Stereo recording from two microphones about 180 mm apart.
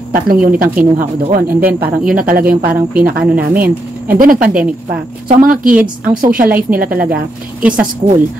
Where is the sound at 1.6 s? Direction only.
55° right (ahead or behind).